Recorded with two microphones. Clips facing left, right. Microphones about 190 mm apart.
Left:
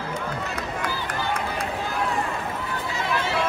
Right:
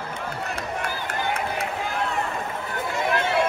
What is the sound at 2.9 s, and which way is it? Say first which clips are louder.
Hubbub: right 3 dB; 55° right (ahead or behind).